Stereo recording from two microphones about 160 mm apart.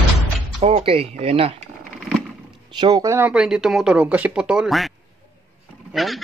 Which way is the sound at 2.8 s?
25° right (ahead or behind).